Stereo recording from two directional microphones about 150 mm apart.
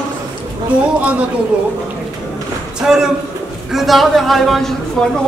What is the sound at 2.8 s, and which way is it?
A woman's voice, 5° right (ahead or behind).